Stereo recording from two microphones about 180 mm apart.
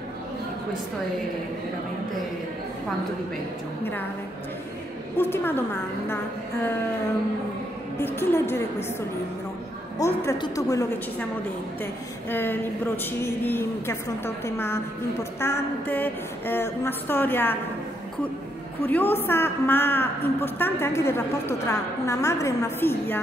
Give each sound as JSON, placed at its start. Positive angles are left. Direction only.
{"t": 5.1, "sound": "a woman's voice", "side_deg": 10}
{"t": 8.0, "sound": "a woman's voice", "side_deg": 10}
{"t": 9.9, "sound": "a woman's voice", "side_deg": 15}
{"t": 18.8, "sound": "a woman's voice", "side_deg": 10}